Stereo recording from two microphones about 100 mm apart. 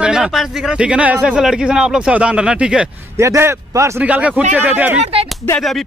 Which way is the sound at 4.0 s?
15° right (ahead or behind).